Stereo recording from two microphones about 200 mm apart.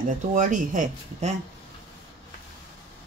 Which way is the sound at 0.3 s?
40° right (ahead or behind).